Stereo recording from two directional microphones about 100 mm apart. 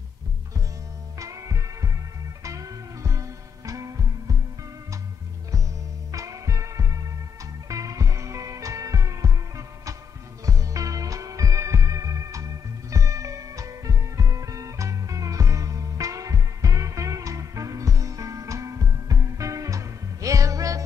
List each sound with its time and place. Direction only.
1.1 s music: 35° right (ahead or behind)
6.1 s music: 35° right (ahead or behind)